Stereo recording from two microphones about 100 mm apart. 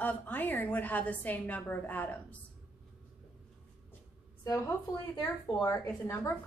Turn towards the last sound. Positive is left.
turn(degrees=30)  # may be behind; listen again after turning